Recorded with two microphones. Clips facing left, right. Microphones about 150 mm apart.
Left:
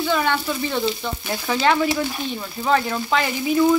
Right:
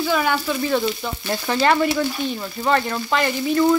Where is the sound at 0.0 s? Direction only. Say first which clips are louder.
Right 1 dB; 5° right (ahead or behind).